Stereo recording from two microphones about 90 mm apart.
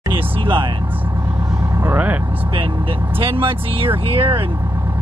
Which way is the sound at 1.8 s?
20° right (ahead or behind).